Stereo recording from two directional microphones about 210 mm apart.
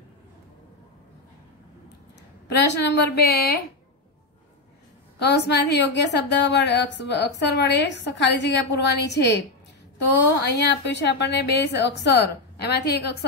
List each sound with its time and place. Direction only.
2.5 s a woman's voice: 55° left (ahead or behind)
5.2 s a woman's voice: 55° left (ahead or behind)
10.5 s a woman's voice: 55° left (ahead or behind)